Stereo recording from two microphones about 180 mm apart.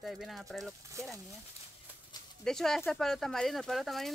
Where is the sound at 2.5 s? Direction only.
Centre (ahead or behind).